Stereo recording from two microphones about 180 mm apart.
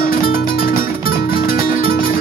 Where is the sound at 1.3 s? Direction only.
55° left (ahead or behind).